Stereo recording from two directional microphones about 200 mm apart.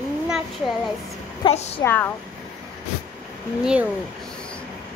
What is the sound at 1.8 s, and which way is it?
Speech, 10° left (ahead or behind).